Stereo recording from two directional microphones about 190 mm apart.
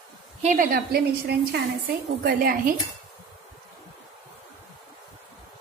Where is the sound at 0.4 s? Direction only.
40° right (ahead or behind).